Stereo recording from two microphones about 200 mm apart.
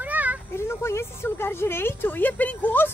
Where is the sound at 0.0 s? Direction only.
10° right (ahead or behind).